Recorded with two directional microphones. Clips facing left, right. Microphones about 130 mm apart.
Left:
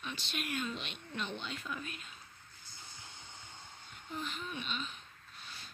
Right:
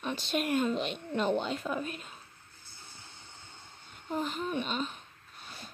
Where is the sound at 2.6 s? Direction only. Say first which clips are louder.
Even; 15° left (ahead or behind).